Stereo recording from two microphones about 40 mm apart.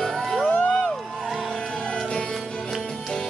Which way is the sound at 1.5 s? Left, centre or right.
Centre.